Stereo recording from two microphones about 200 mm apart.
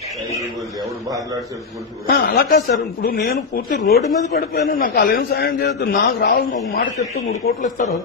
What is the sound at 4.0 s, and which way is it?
Speech, 35° left (ahead or behind).